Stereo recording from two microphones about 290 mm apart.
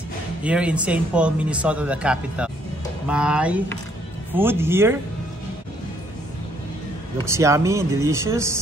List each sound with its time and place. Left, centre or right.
0.4 s speech: centre
7.2 s speech: centre